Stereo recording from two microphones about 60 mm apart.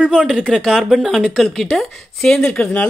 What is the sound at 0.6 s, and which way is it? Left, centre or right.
Speech, centre.